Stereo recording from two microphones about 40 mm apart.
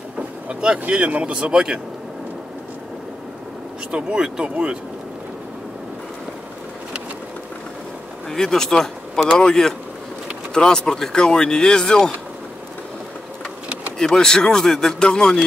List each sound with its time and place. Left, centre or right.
0.5 s speech: right
1.0 s speech: right
1.3 s speech: centre
3.9 s speech: right
8.3 s speech: centre
13.9 s speech: centre